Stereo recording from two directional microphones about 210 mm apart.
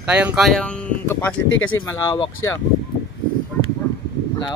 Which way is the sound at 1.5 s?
70° left (ahead or behind).